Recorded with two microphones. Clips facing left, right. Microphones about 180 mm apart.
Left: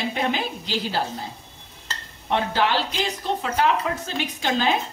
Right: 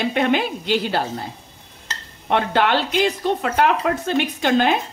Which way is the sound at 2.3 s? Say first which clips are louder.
Right 4 dB; 60° right (ahead or behind).